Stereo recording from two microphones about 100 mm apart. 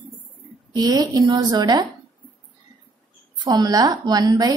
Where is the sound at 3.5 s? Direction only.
40° right (ahead or behind).